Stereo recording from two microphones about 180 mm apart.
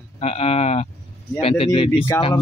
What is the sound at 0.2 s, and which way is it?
Speech, 35° left (ahead or behind).